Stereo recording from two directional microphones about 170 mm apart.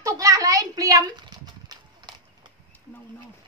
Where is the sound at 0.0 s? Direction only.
20° right (ahead or behind).